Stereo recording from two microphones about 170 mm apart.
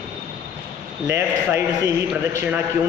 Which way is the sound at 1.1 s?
15° right (ahead or behind).